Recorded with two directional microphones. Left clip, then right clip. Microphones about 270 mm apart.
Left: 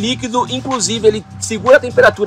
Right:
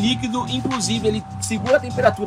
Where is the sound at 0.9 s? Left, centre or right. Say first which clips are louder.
Left 9 dB; left.